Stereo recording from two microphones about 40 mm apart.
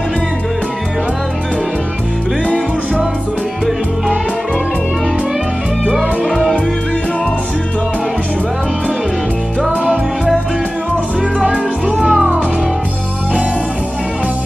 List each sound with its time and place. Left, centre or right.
6.2 s music: centre
9.7 s music: right
11.3 s music: right